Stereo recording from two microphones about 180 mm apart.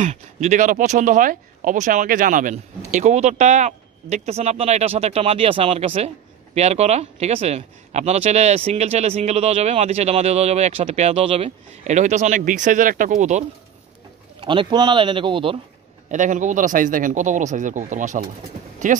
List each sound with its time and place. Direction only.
0.0 s speech: 40° right (ahead or behind)
14.4 s speech: 25° right (ahead or behind)
16.1 s speech: 45° right (ahead or behind)